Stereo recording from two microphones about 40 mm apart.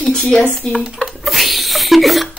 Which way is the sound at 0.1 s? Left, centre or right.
Centre.